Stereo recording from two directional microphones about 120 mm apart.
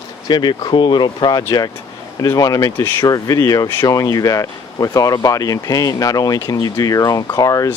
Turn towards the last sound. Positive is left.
turn(degrees=30)  # may be behind; listen again after turning